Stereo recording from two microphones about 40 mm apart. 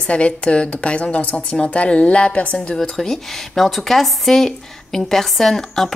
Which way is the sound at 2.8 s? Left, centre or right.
Centre.